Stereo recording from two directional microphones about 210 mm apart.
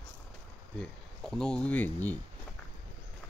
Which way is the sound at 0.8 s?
5° left (ahead or behind).